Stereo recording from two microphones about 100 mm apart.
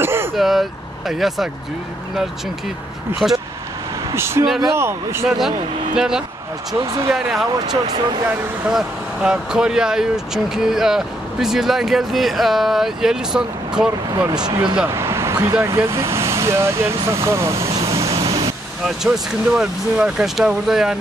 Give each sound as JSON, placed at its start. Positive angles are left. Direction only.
{"t": 0.0, "sound": "throat clearing", "side_deg": -25}
{"t": 0.3, "sound": "speech", "side_deg": 0}
{"t": 3.1, "sound": "speech", "side_deg": -25}
{"t": 5.9, "sound": "speech", "side_deg": -5}
{"t": 6.7, "sound": "speech", "side_deg": -35}
{"t": 7.2, "sound": "speech", "side_deg": -5}
{"t": 7.5, "sound": "speech", "side_deg": -40}
{"t": 8.6, "sound": "speech", "side_deg": -5}
{"t": 14.3, "sound": "speech", "side_deg": -45}
{"t": 14.9, "sound": "a sound", "side_deg": -25}
{"t": 15.5, "sound": "speech", "side_deg": -25}
{"t": 17.8, "sound": "vehicle", "side_deg": -30}
{"t": 18.9, "sound": "speech", "side_deg": -5}